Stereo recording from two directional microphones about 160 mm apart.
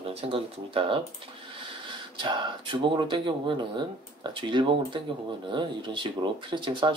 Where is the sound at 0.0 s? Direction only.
35° right (ahead or behind).